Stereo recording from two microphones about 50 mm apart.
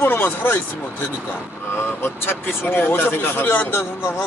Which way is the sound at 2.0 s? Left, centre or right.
Left.